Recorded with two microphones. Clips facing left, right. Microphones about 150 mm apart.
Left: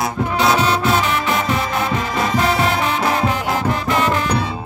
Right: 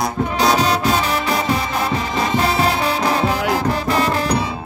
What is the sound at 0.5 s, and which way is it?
Music, 35° right (ahead or behind).